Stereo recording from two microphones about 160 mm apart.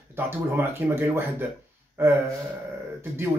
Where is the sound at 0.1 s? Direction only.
15° right (ahead or behind).